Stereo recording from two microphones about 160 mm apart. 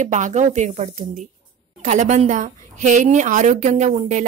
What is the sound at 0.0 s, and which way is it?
A woman's voice, 50° right (ahead or behind).